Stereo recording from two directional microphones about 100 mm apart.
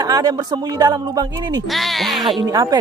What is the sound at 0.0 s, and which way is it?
Speech, 40° right (ahead or behind).